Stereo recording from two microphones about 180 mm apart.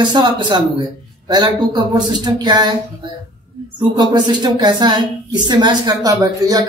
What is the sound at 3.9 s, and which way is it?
Speech, 25° right (ahead or behind).